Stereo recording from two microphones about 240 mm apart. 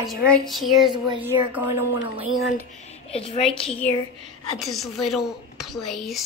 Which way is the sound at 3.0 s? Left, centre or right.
Left.